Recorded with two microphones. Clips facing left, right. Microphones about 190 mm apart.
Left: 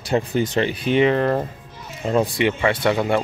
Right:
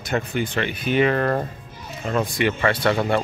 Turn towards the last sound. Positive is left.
turn(degrees=15)  # may be behind; listen again after turning